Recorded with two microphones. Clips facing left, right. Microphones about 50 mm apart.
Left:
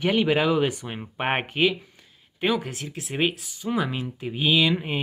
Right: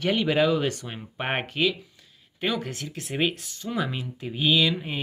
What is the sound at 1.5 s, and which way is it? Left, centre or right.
Speech, left.